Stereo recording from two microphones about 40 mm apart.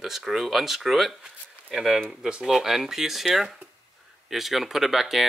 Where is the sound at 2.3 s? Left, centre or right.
Right.